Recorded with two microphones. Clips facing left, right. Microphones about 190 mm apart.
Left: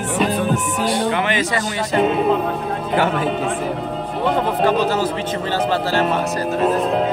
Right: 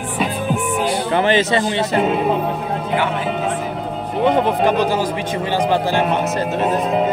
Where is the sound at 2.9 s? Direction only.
45° left (ahead or behind).